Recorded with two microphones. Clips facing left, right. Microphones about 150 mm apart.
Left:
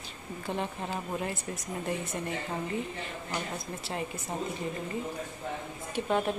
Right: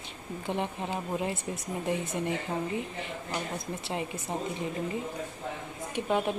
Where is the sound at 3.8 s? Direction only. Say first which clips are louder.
Even; 20° right (ahead or behind).